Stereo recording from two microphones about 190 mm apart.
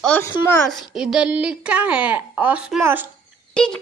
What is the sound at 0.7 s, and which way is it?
A woman's voice, centre (ahead or behind).